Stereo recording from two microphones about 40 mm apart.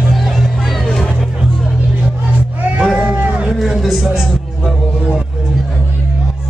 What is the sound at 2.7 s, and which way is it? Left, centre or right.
Cat, right.